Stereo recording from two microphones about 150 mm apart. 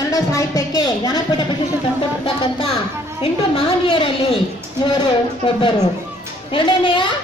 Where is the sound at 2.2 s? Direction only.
40° left (ahead or behind).